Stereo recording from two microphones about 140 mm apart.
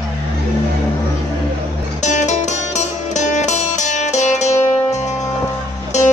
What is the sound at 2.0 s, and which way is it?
Music, 55° left (ahead or behind).